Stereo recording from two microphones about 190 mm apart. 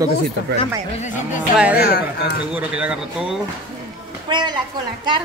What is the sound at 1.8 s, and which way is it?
Speech, 55° left (ahead or behind).